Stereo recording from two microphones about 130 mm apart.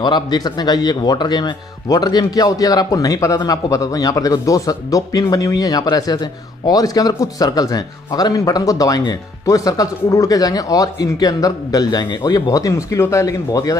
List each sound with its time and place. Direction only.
0.0 s a man's voice: 35° left (ahead or behind)